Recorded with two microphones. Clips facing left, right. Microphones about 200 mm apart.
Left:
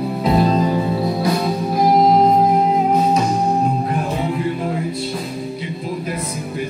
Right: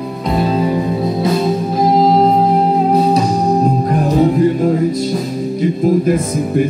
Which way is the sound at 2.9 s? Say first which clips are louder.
Right 4 dB; 35° right (ahead or behind).